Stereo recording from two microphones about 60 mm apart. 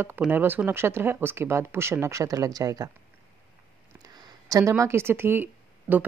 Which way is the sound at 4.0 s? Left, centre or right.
Right.